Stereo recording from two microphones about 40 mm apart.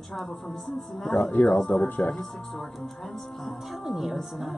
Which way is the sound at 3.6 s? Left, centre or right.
Centre.